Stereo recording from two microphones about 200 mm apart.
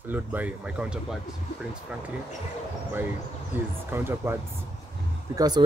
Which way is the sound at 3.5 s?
10° right (ahead or behind).